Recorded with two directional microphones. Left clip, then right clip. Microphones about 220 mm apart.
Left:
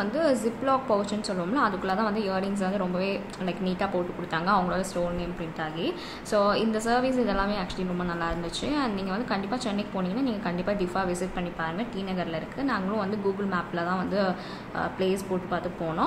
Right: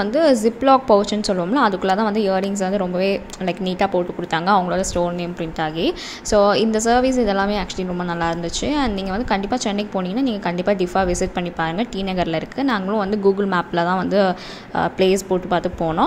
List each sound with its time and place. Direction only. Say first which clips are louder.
0.0 s a woman's voice: right 9 dB; 30° right (ahead or behind)